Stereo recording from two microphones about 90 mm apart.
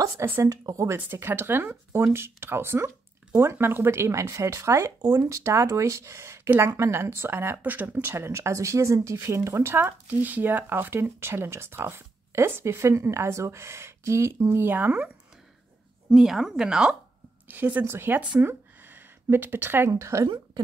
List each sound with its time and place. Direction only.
0.2 s speech: 25° right (ahead or behind)
0.5 s speech: 35° right (ahead or behind)
0.9 s speech: 25° right (ahead or behind)
16.1 s a woman's voice: 5° right (ahead or behind)
18.4 s a sound: 25° right (ahead or behind)
19.9 s speech: 35° right (ahead or behind)